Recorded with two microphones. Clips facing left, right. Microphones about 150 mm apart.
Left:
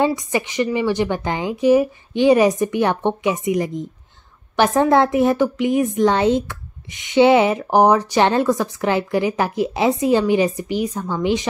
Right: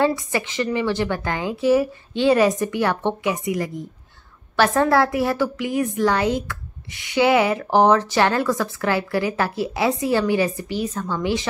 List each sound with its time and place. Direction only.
0.0 s a woman's voice: 15° left (ahead or behind)